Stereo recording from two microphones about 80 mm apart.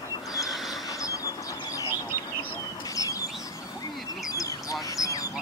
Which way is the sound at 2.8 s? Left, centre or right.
Left.